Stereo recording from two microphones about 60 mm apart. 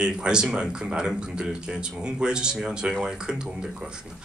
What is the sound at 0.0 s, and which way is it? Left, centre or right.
Speech, centre.